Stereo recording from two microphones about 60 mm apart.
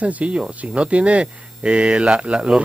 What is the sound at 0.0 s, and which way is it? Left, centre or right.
Speech, right.